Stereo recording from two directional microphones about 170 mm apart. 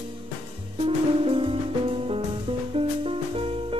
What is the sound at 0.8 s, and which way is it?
Music, 35° right (ahead or behind).